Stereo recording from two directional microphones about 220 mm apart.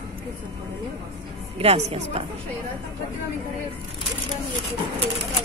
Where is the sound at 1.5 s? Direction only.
30° right (ahead or behind).